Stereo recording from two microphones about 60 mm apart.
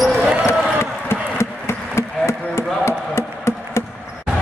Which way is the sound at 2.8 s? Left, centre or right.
Left.